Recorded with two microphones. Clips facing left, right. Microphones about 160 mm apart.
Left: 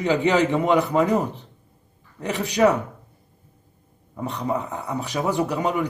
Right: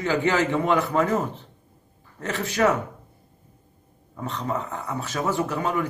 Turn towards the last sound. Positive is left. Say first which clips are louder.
# left 2 dB
turn(degrees=15)  # may be behind; listen again after turning